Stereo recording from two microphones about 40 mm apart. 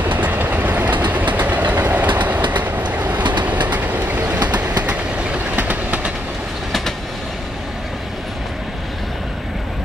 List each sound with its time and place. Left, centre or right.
0.0 s train: right
5.6 s train: right